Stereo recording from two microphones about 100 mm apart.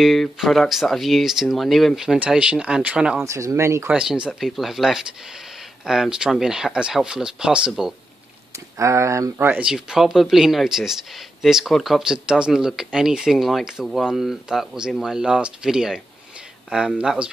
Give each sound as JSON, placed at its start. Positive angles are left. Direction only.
{"t": 0.0, "sound": "speech", "side_deg": 0}
{"t": 3.2, "sound": "speech", "side_deg": -30}
{"t": 3.9, "sound": "speech", "side_deg": -10}
{"t": 8.5, "sound": "speech", "side_deg": -30}
{"t": 9.5, "sound": "speech", "side_deg": -10}